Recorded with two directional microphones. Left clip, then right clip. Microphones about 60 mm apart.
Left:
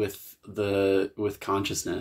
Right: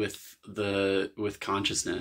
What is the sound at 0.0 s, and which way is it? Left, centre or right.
Speech, centre.